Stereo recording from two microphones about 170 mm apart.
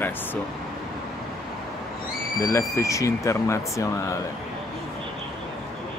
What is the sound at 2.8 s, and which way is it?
Speech, 20° left (ahead or behind).